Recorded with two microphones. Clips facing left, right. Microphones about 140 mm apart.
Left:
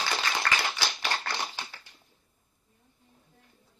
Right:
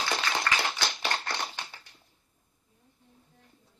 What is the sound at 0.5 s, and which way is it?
Clapping, 5° left (ahead or behind).